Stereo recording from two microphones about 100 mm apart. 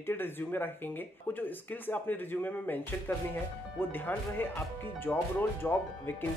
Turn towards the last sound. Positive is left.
turn(degrees=20)  # may be behind; listen again after turning